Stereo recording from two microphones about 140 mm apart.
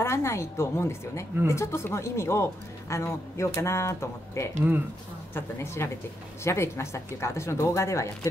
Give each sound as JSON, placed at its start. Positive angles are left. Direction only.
{"t": 0.0, "sound": "speech", "side_deg": 20}